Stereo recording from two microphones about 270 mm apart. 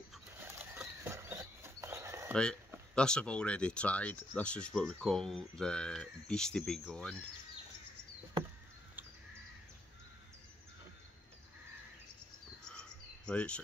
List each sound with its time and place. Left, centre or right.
0.1 s a sound: centre
2.3 s speech: centre
12.6 s cricket: centre